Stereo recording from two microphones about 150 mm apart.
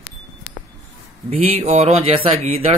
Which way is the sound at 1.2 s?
50° right (ahead or behind).